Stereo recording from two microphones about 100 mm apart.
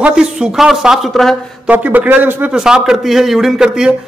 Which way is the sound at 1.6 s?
15° right (ahead or behind).